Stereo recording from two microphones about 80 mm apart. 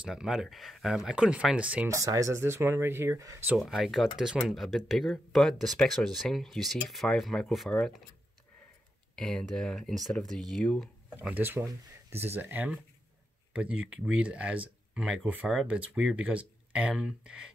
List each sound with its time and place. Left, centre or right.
0.0 s speech: centre
1.9 s speech: right
3.5 s speech: centre
9.1 s speech: centre
11.2 s speech: right